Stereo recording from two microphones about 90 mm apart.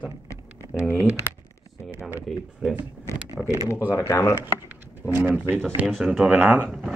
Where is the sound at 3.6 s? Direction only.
30° left (ahead or behind).